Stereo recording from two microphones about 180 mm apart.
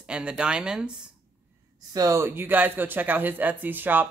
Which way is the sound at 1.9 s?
20° right (ahead or behind).